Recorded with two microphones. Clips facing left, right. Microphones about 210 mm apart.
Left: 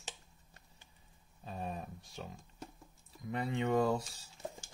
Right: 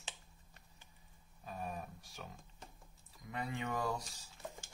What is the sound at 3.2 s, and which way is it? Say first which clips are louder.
Speech: left 7 dB; 30° left (ahead or behind).